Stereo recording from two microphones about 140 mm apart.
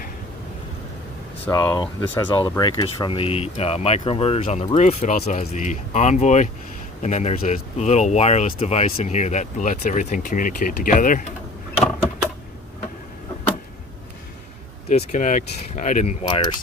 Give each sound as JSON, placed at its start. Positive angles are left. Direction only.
{"t": 1.5, "sound": "speech", "side_deg": 25}
{"t": 14.9, "sound": "speech", "side_deg": 55}